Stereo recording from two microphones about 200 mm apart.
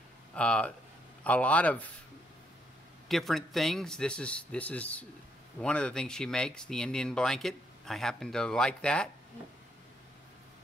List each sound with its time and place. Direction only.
0.3 s speech: 5° left (ahead or behind)
3.1 s speech: centre (ahead or behind)